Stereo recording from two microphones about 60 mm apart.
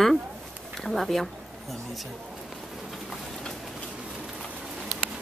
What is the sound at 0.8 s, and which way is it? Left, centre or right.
Speech, centre.